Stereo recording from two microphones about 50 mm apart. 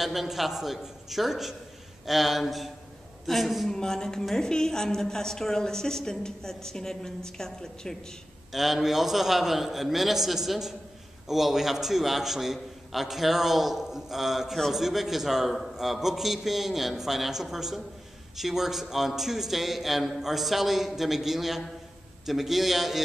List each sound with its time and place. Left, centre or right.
0.0 s a man's voice: centre
3.7 s a woman's voice: centre
8.5 s a man's voice: centre